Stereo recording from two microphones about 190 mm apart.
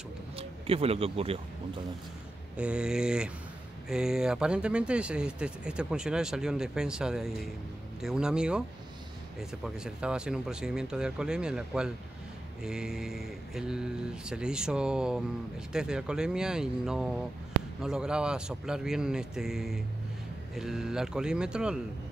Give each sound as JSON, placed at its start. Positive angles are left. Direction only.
{"t": 0.4, "sound": "speech", "side_deg": -30}
{"t": 2.5, "sound": "speech", "side_deg": -5}